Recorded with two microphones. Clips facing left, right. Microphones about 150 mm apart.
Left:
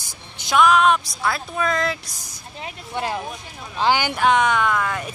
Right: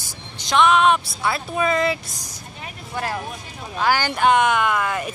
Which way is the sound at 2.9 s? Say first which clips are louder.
Left 1 dB; 20° left (ahead or behind).